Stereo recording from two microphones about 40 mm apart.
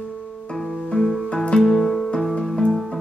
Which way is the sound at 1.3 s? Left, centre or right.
Left.